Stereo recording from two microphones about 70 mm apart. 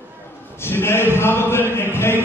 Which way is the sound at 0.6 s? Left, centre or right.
Left.